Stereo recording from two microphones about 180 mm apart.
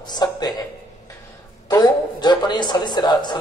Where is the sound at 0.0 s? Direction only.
25° left (ahead or behind).